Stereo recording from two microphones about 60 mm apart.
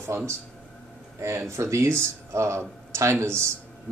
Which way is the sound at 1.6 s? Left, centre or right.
Right.